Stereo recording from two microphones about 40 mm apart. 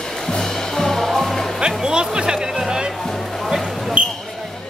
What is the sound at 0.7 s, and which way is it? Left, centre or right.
Music, centre.